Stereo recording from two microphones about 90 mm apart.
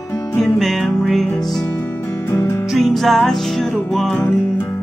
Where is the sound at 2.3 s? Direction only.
30° left (ahead or behind).